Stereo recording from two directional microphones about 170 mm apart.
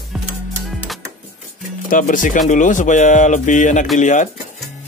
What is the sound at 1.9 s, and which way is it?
Speech, 50° left (ahead or behind).